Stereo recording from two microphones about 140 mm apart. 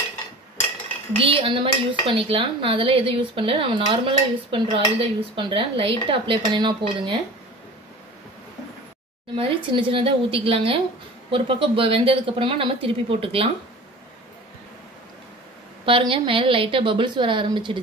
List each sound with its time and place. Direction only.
1.1 s dishes: 40° right (ahead or behind)
9.3 s dishes: 35° right (ahead or behind)
15.8 s dishes: 40° right (ahead or behind)